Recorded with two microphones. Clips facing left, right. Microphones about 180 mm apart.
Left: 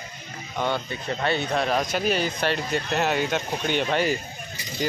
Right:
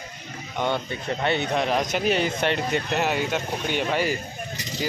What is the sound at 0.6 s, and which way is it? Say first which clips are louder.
Speech: right 1 dB; 25° right (ahead or behind).